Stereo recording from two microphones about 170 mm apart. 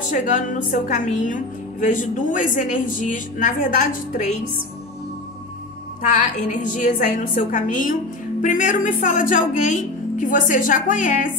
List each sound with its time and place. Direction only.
0.0 s a woman's voice: 45° left (ahead or behind)
6.0 s a woman's voice: 45° left (ahead or behind)